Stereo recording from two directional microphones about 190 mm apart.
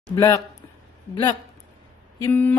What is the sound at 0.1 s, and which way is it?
Speech, 20° left (ahead or behind).